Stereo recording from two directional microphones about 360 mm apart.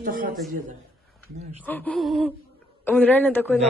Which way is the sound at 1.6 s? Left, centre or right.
Centre.